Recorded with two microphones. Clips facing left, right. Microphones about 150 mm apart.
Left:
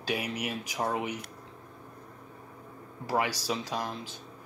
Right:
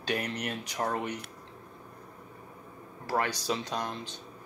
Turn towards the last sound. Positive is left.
turn(degrees=5)  # may be behind; listen again after turning